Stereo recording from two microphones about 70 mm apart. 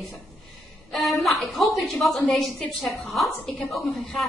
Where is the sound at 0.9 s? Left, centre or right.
Centre.